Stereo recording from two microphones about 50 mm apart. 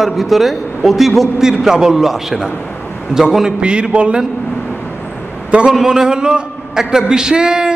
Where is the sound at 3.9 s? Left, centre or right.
Right.